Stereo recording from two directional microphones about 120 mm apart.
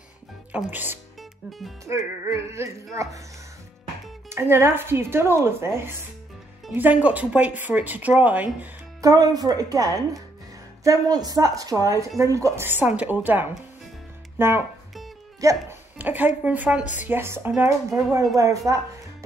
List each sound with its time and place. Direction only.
0.5 s speech: 15° right (ahead or behind)
4.3 s speech: 20° right (ahead or behind)
6.7 s speech: 15° right (ahead or behind)
9.0 s speech: 30° right (ahead or behind)
16.0 s speech: 15° right (ahead or behind)
17.8 s speech: centre (ahead or behind)
18.3 s speech: 25° right (ahead or behind)